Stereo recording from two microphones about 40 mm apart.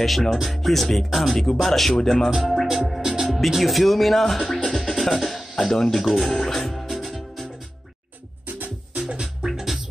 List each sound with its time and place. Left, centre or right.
0.0 s speech: centre
2.4 s music: centre
2.7 s speech: centre
3.0 s music: centre
3.3 s speech: centre
4.6 s music: centre
5.7 s speech: centre
6.4 s music: centre
8.5 s music: right
9.2 s music: centre